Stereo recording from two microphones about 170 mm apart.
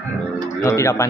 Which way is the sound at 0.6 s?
15° left (ahead or behind).